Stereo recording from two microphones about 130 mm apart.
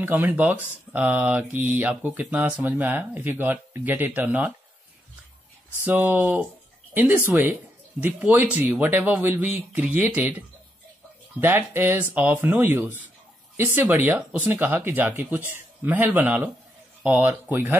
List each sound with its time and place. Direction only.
0.0 s speech: 15° right (ahead or behind)
5.9 s speech: 15° right (ahead or behind)
11.3 s speech: 15° right (ahead or behind)